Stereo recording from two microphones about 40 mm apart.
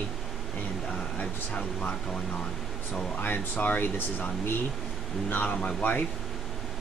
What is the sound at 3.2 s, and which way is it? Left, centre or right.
Speech, left.